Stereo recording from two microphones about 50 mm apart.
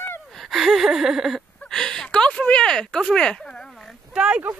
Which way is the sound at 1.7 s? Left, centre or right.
Centre.